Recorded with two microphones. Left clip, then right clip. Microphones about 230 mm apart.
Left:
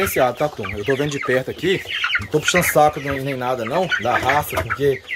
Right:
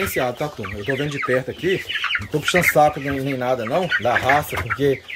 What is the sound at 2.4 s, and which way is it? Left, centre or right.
Speech, centre.